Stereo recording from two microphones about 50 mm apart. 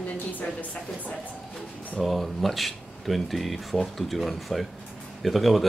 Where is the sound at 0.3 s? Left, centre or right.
Left.